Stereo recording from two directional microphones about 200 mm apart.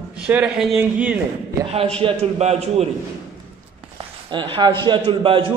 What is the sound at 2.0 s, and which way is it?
Speech, 30° right (ahead or behind).